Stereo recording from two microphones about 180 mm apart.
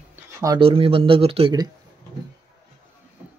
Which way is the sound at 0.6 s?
30° right (ahead or behind).